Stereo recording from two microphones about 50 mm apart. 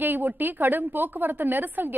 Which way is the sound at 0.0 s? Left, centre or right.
Right.